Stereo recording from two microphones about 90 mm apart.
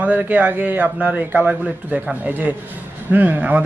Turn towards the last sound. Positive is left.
turn(degrees=-20)  # may be behind; listen again after turning